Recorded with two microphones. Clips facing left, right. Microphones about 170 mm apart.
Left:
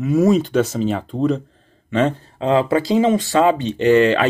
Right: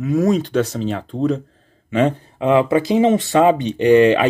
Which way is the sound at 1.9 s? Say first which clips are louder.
Right 1 dB; 10° right (ahead or behind).